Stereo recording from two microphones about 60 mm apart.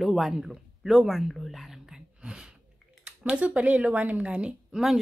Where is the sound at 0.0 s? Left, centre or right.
Centre.